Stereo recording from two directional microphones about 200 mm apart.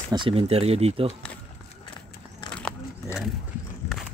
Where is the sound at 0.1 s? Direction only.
25° right (ahead or behind).